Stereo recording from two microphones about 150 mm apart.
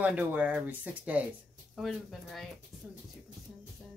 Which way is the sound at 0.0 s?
10° right (ahead or behind).